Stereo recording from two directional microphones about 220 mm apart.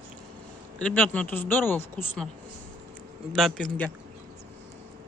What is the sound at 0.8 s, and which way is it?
Speech, 5° left (ahead or behind).